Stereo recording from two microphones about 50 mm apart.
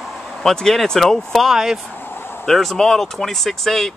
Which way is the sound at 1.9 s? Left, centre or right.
Left.